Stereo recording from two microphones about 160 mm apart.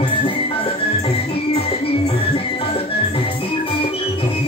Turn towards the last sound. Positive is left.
turn(degrees=35)  # may be behind; listen again after turning